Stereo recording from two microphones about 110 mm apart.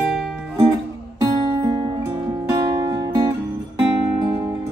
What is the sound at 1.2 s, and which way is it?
Guitar, 35° right (ahead or behind).